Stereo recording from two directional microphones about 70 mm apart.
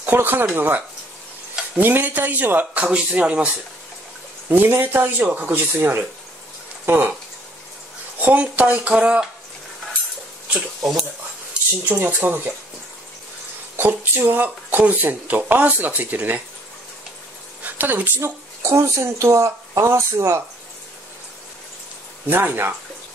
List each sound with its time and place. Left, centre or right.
0.0 s speech: right
4.5 s speech: right
8.2 s speech: right
11.9 s speech: right
13.7 s speech: right
17.6 s speech: right
18.6 s speech: right
22.3 s speech: right